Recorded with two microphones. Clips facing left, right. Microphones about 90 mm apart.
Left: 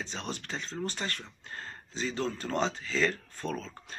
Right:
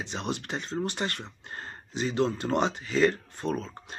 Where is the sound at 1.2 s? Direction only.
25° right (ahead or behind).